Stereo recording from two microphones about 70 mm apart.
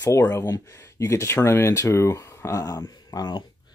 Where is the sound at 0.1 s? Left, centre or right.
Left.